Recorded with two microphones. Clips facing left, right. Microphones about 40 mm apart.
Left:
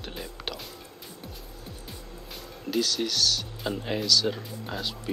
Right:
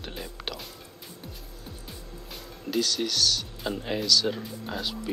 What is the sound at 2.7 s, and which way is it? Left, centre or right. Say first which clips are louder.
Speech: even; centre.